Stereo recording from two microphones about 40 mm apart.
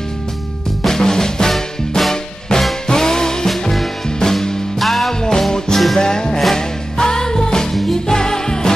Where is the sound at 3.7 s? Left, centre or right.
Centre.